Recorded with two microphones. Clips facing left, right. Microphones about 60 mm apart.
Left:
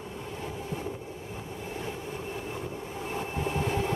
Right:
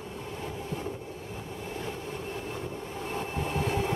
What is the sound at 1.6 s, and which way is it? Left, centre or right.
Train, centre.